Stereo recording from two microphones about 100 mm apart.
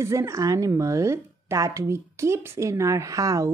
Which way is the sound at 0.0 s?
30° right (ahead or behind).